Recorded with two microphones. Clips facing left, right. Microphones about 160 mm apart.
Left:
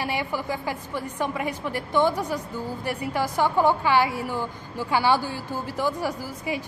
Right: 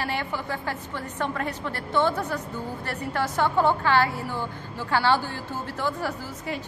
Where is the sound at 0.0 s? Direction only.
10° left (ahead or behind).